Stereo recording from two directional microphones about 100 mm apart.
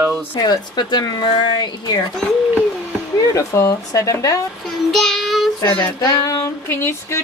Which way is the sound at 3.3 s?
30° left (ahead or behind).